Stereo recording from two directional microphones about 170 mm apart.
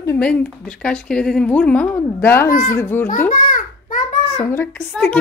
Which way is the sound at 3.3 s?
50° left (ahead or behind).